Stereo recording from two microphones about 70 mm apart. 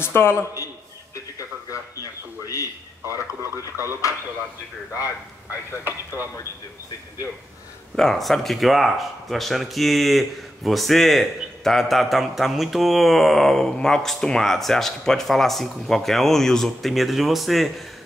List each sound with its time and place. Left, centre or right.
0.0 s a man's voice: left
1.7 s a sound: left
3.7 s speech: right
7.9 s speech: centre